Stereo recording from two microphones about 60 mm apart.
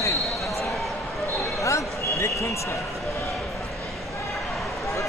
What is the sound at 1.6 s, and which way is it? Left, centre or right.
Speech, left.